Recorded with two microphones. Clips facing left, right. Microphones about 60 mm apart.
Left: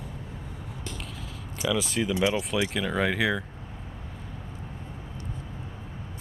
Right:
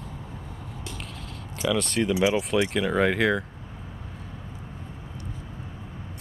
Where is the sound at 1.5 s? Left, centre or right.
Centre.